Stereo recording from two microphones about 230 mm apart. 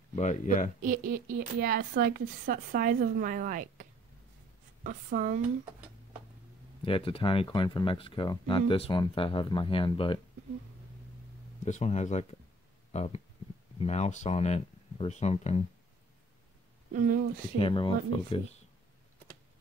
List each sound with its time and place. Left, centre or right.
0.1 s speech: left
0.8 s speech: right
4.8 s speech: right
6.8 s speech: left
11.6 s speech: left
16.9 s speech: right
17.6 s speech: left